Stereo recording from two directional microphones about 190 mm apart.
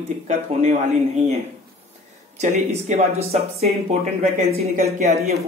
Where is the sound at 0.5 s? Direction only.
35° right (ahead or behind).